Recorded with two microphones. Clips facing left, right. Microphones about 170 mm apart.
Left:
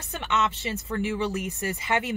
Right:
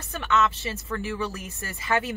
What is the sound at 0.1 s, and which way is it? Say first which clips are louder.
Speech: right 3 dB; 20° left (ahead or behind).